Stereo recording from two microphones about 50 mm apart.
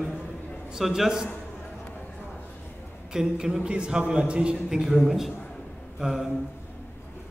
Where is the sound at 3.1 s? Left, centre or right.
Centre.